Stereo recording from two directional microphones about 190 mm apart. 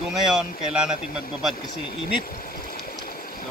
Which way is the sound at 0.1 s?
5° right (ahead or behind).